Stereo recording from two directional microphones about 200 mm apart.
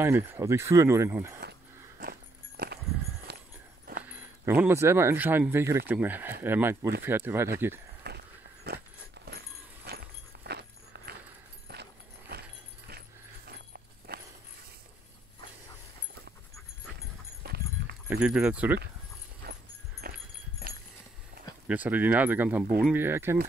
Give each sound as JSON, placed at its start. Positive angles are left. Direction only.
{"t": 0.0, "sound": "speech", "side_deg": -10}
{"t": 2.0, "sound": "music", "side_deg": -50}
{"t": 3.3, "sound": "a sound", "side_deg": -60}
{"t": 4.0, "sound": "speech", "side_deg": -10}
{"t": 8.0, "sound": "walk", "side_deg": -50}
{"t": 8.6, "sound": "horse", "side_deg": -55}
{"t": 9.8, "sound": "a sound", "side_deg": -55}
{"t": 11.6, "sound": "horse", "side_deg": -55}
{"t": 13.5, "sound": "a sound", "side_deg": -50}
{"t": 17.4, "sound": "clip-clop", "side_deg": -55}
{"t": 18.1, "sound": "speech", "side_deg": -5}
{"t": 19.4, "sound": "music", "side_deg": -50}
{"t": 20.0, "sound": "horse", "side_deg": -50}
{"t": 21.6, "sound": "speech", "side_deg": -10}